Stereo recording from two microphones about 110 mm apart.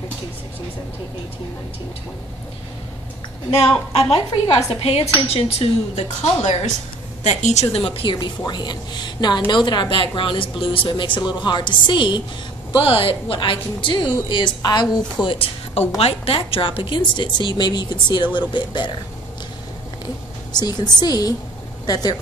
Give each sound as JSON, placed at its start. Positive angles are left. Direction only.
{"t": 3.9, "sound": "a woman's voice", "side_deg": 70}
{"t": 4.7, "sound": "a woman's voice", "side_deg": 60}
{"t": 7.8, "sound": "a woman's voice", "side_deg": 55}
{"t": 12.8, "sound": "a woman's voice", "side_deg": 55}
{"t": 20.5, "sound": "a woman's voice", "side_deg": 40}